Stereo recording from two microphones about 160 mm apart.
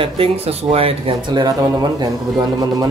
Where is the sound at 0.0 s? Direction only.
35° right (ahead or behind).